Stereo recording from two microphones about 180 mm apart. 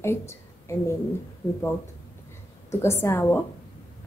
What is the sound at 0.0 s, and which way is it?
Speech, 15° left (ahead or behind).